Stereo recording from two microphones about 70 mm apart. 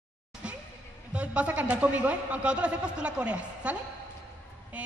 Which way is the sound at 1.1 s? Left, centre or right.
Centre.